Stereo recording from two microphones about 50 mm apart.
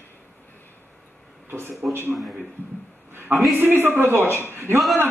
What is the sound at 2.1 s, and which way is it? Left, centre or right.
Speech, centre.